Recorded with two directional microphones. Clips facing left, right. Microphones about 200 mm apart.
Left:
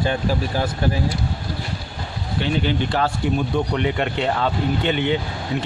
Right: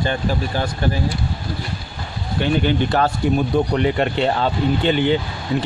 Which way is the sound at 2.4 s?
50° right (ahead or behind).